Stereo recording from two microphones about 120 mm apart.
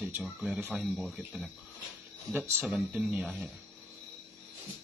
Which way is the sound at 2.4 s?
20° right (ahead or behind).